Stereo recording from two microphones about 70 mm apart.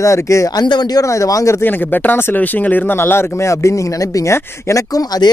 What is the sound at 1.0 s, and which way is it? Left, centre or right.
Speech, left.